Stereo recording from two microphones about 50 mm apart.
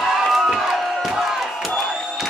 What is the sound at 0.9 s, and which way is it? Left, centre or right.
Crowd, centre.